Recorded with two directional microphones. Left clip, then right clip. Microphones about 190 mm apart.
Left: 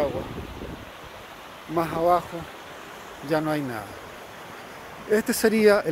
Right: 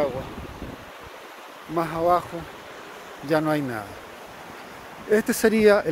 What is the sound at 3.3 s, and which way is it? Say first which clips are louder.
Speech: right 2 dB; 20° right (ahead or behind).